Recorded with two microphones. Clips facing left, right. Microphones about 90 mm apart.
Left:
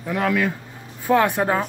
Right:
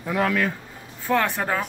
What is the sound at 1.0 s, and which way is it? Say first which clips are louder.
Speech: left 5 dB; 15° left (ahead or behind).